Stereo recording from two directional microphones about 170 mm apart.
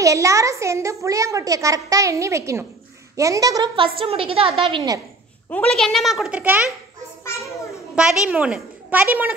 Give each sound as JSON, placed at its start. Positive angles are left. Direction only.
{"t": 0.0, "sound": "a child's voice", "side_deg": -20}
{"t": 4.0, "sound": "a woman's voice", "side_deg": -30}
{"t": 5.5, "sound": "a child's voice", "side_deg": 5}
{"t": 7.2, "sound": "a child's voice", "side_deg": 15}
{"t": 7.9, "sound": "a child's voice", "side_deg": -5}